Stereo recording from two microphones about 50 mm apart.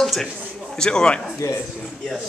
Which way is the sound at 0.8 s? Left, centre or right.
Centre.